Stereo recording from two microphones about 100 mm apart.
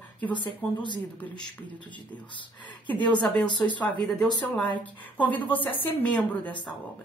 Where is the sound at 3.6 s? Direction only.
15° left (ahead or behind).